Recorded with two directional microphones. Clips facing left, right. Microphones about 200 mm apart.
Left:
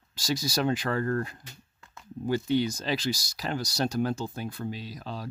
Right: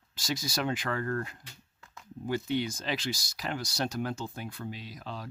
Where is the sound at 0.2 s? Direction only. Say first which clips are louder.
Left 4 dB; 35° left (ahead or behind).